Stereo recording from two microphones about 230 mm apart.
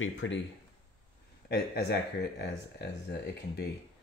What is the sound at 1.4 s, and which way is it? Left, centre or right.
Speech, left.